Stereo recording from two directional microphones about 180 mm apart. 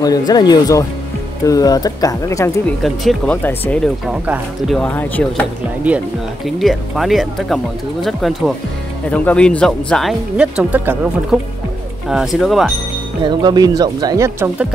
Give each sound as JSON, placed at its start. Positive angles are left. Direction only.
{"t": 0.0, "sound": "speech", "side_deg": 20}
{"t": 2.8, "sound": "speech", "side_deg": 0}
{"t": 13.2, "sound": "speech", "side_deg": -25}